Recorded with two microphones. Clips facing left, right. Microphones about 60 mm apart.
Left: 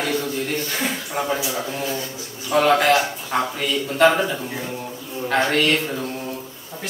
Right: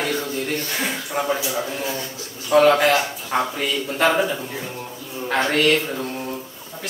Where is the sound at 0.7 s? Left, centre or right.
Centre.